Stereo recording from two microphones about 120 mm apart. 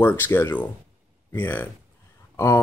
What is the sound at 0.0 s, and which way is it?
Speech, 20° left (ahead or behind).